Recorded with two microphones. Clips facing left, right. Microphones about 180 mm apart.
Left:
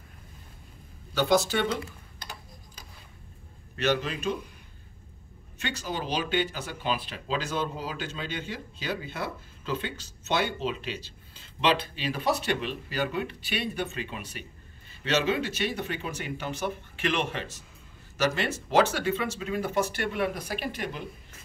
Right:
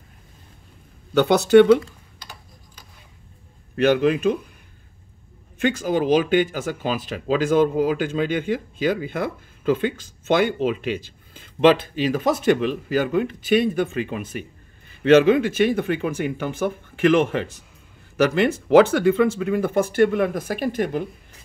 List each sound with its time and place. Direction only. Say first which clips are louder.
1.1 s speech: right 11 dB; 65° right (ahead or behind)
3.7 s speech: right 10 dB; 55° right (ahead or behind)
5.6 s speech: right 13 dB; 50° right (ahead or behind)